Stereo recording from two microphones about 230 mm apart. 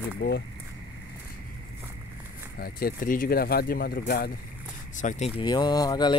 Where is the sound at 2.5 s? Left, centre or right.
Left.